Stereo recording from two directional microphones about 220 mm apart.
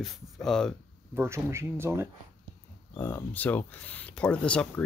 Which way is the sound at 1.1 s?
10° right (ahead or behind).